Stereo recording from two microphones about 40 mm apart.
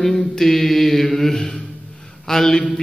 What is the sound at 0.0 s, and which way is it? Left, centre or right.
Mantra, centre.